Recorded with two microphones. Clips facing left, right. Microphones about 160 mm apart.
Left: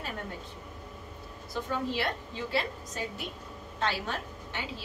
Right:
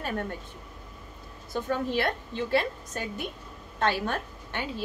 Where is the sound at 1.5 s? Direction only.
55° right (ahead or behind).